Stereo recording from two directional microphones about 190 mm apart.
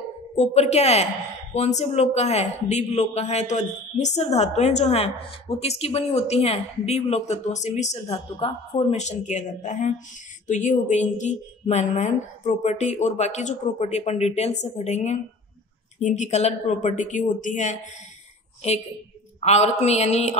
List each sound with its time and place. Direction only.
0.4 s speech: 35° left (ahead or behind)
19.4 s speech: 35° left (ahead or behind)